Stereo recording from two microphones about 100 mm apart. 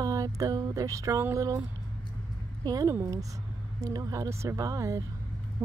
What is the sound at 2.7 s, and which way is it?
Speech, 35° right (ahead or behind).